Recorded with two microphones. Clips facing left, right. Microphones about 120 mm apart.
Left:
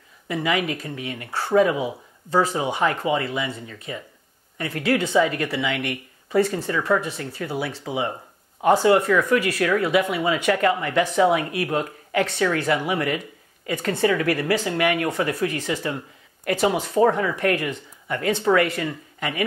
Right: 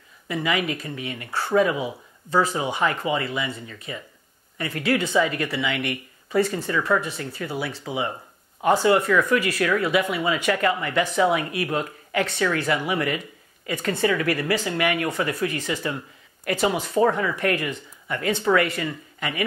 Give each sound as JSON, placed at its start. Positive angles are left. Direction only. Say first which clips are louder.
{"t": 0.3, "sound": "speech", "louder": "left 1 dB", "side_deg": 45}
{"t": 16.9, "sound": "speech", "louder": "left 2 dB", "side_deg": 35}